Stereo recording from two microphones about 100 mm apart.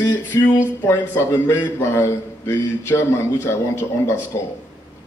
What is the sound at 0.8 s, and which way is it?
A man's voice, 25° left (ahead or behind).